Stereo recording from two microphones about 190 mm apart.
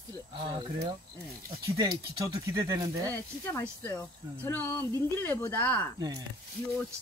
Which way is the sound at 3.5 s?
10° left (ahead or behind).